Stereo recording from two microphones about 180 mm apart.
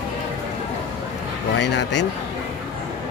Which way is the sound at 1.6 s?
85° left.